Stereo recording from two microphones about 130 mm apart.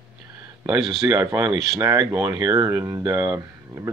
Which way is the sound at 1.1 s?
25° right (ahead or behind).